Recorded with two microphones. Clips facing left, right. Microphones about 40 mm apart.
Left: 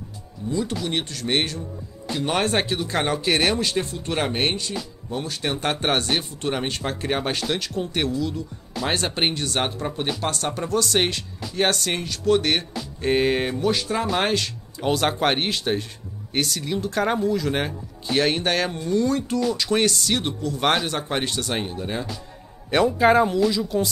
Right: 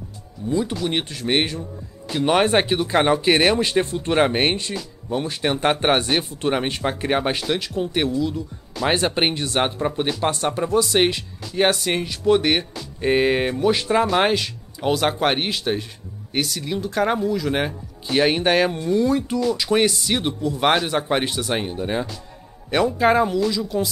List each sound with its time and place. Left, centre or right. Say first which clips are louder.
0.5 s speech: right 3 dB; centre
13.6 s speech: right 3 dB; centre
14.0 s speech: right 4 dB; centre
22.7 s speech: even; centre